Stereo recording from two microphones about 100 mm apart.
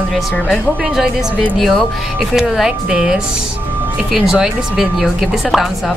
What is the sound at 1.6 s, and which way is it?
A woman's voice, 5° right (ahead or behind).